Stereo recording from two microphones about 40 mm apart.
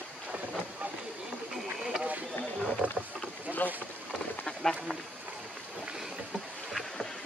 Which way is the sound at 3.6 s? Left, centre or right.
Left.